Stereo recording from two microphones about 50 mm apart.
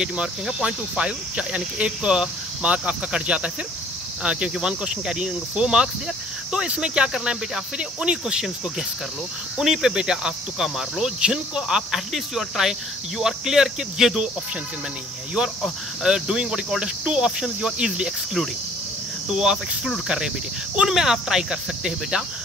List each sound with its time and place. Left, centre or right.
0.0 s speech: centre
16.0 s speech: centre
19.3 s speech: centre
20.7 s speech: centre